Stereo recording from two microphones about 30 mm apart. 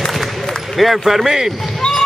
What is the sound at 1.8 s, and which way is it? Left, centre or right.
Basketball bounce, left.